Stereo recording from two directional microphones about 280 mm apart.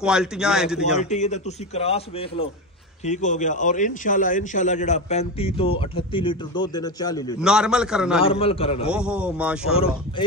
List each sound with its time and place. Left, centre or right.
0.0 s a man's voice: centre
0.9 s a man's voice: left
7.3 s a man's voice: centre
8.2 s a man's voice: centre
8.9 s a man's voice: centre